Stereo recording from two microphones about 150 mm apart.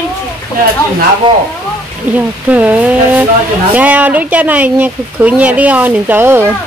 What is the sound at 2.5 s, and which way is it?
Speech, 10° right (ahead or behind).